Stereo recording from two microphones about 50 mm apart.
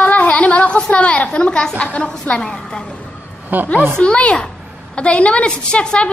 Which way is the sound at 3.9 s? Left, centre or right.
Left.